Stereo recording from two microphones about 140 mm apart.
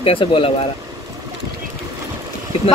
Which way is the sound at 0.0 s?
40° left (ahead or behind).